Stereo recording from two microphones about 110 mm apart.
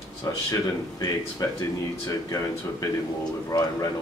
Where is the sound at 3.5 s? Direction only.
35° left (ahead or behind).